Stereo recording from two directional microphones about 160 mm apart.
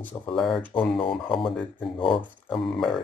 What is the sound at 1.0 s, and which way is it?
Speech, 35° left (ahead or behind).